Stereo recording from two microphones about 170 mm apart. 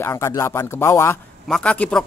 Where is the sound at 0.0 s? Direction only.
15° left (ahead or behind).